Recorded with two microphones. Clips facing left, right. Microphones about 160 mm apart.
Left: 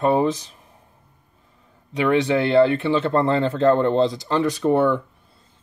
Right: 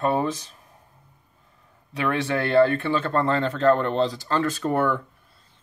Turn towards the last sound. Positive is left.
turn(degrees=20)  # may be behind; listen again after turning